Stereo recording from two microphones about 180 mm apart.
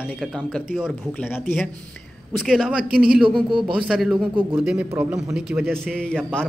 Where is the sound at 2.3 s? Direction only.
Centre (ahead or behind).